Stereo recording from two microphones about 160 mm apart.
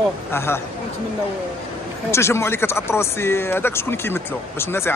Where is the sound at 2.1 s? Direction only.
15° left (ahead or behind).